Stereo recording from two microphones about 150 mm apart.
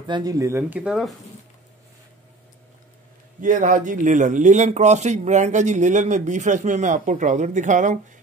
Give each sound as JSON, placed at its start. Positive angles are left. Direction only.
{"t": 0.0, "sound": "speech", "side_deg": -30}
{"t": 3.3, "sound": "speech", "side_deg": -60}